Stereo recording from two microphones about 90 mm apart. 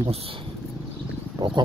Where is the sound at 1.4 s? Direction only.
50° right (ahead or behind).